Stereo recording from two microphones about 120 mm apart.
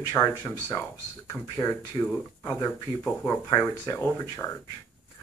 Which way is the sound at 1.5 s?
25° left (ahead or behind).